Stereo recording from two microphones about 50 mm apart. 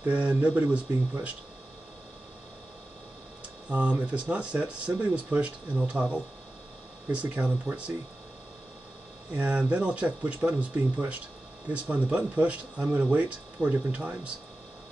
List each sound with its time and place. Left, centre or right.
0.0 s speech: right
3.7 s speech: right
9.3 s speech: right